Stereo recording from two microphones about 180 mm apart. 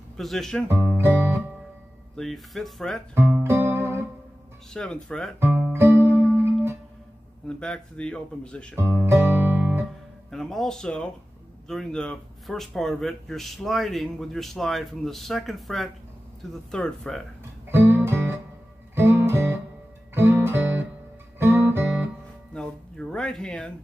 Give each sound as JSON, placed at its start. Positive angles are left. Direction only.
{"t": 0.2, "sound": "speech", "side_deg": 0}
{"t": 0.7, "sound": "speech", "side_deg": -15}
{"t": 2.1, "sound": "speech", "side_deg": 0}
{"t": 3.4, "sound": "music", "side_deg": -15}
{"t": 4.7, "sound": "speech", "side_deg": 5}
{"t": 5.4, "sound": "music", "side_deg": -10}
{"t": 7.4, "sound": "speech", "side_deg": 5}
{"t": 8.7, "sound": "guitar", "side_deg": -15}
{"t": 10.3, "sound": "speech", "side_deg": 0}
{"t": 17.6, "sound": "music", "side_deg": -10}
{"t": 20.2, "sound": "guitar", "side_deg": -15}
{"t": 22.5, "sound": "music", "side_deg": 5}